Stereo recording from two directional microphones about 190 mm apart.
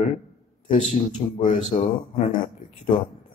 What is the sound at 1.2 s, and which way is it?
A man's voice, 35° left (ahead or behind).